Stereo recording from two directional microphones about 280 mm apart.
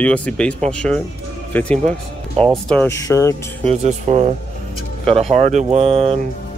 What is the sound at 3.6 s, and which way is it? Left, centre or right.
Speech, right.